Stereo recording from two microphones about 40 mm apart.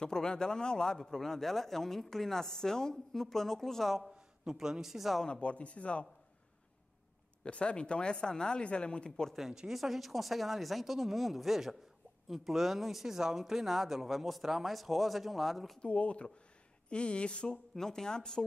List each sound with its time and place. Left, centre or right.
0.0 s a woman's voice: centre
0.9 s a woman's voice: centre
4.5 s a man's voice: centre
5.2 s speech: left
7.4 s speech: left
9.3 s speech: centre
15.8 s speech: left
17.7 s a woman's voice: centre